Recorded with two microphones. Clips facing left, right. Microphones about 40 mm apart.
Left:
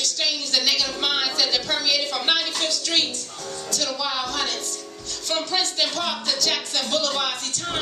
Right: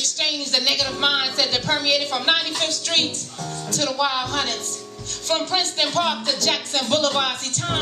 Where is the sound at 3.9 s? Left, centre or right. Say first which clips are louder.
Right 8 dB; right.